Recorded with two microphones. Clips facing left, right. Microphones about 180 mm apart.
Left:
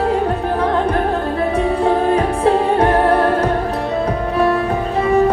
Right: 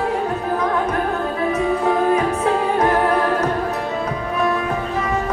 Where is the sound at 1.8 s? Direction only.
30° left (ahead or behind).